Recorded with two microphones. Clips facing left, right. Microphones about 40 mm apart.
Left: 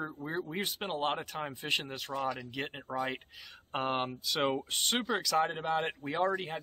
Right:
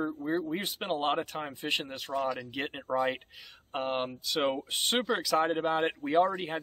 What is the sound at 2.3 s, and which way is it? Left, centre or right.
Speech, centre.